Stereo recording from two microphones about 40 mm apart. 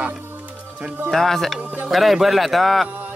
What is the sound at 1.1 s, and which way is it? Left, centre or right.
Speech, centre.